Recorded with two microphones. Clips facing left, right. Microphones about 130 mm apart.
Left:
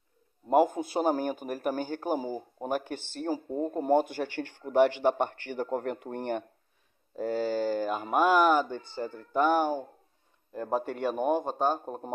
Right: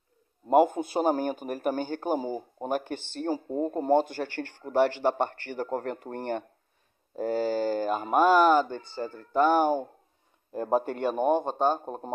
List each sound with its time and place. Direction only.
0.5 s a man's voice: 5° left (ahead or behind)
4.1 s speech: 10° left (ahead or behind)
7.3 s speech: 5° right (ahead or behind); by 9.6 s 10° left (ahead or behind)
10.6 s a man's voice: 5° right (ahead or behind)